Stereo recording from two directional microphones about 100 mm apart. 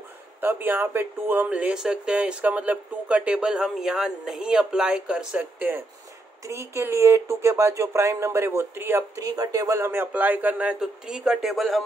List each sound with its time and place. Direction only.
0.4 s speech: 20° right (ahead or behind)
6.4 s speech: 30° right (ahead or behind)
9.2 s speech: 35° right (ahead or behind); by 11.8 s centre (ahead or behind)